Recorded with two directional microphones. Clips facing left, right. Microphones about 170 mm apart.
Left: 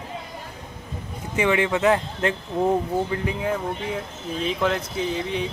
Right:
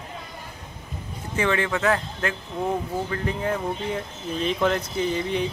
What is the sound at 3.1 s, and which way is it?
Speech, 10° left (ahead or behind).